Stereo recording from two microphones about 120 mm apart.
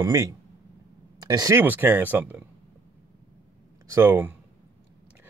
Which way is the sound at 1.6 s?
15° right (ahead or behind).